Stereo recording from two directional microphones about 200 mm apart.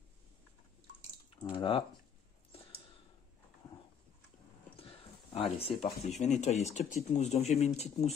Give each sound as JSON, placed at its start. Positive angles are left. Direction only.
{"t": 1.4, "sound": "speech", "side_deg": 25}
{"t": 4.7, "sound": "dog", "side_deg": 30}
{"t": 5.6, "sound": "speech", "side_deg": 30}